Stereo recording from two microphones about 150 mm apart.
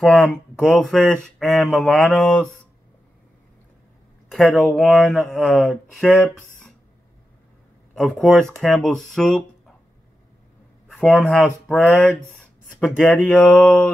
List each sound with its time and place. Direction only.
0.0 s speech: 5° left (ahead or behind)
4.3 s speech: 5° left (ahead or behind)
7.9 s speech: centre (ahead or behind)
10.9 s speech: 5° left (ahead or behind)
11.8 s speech: 15° left (ahead or behind)